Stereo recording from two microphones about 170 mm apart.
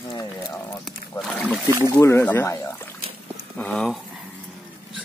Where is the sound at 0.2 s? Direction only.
15° left (ahead or behind).